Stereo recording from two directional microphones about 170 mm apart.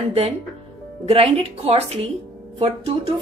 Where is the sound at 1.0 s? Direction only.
35° right (ahead or behind).